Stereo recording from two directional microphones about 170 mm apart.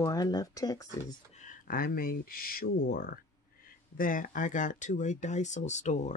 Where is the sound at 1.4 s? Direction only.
55° left (ahead or behind).